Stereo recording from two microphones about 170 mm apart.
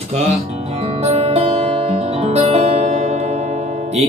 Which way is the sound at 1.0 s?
40° right (ahead or behind).